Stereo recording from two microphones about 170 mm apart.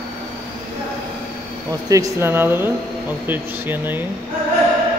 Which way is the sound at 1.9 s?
15° right (ahead or behind).